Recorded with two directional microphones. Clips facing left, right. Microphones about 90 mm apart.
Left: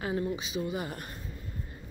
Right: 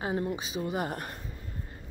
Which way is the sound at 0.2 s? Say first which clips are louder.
Even; 40° right (ahead or behind).